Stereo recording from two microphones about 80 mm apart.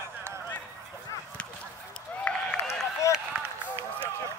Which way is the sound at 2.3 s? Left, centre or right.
Centre.